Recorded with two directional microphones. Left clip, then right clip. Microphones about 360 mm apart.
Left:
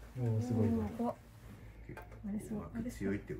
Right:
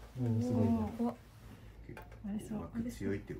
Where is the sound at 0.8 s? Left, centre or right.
Centre.